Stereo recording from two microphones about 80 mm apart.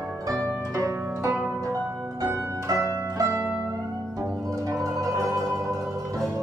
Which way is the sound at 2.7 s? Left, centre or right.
Right.